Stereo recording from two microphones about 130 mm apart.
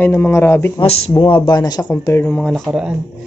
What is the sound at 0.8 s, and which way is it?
Speech, 50° left (ahead or behind).